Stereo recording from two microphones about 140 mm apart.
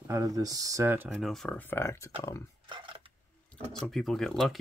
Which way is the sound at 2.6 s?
35° right (ahead or behind).